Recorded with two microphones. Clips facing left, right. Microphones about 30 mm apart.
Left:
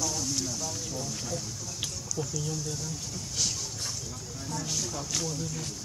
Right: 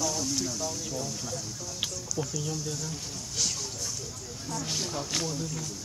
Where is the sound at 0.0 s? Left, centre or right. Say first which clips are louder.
Right 2 dB; centre.